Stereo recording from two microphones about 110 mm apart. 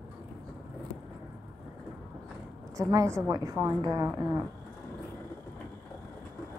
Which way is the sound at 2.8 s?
30° right (ahead or behind).